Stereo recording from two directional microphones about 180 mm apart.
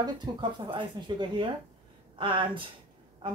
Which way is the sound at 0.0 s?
25° right (ahead or behind).